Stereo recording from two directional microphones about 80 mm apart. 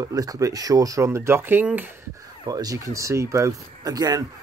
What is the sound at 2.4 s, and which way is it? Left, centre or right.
Speech, right.